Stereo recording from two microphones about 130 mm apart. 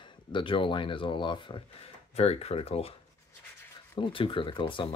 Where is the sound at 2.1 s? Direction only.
55° left (ahead or behind).